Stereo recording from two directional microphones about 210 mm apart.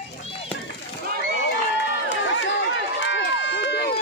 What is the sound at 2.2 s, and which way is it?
Run, 60° left (ahead or behind).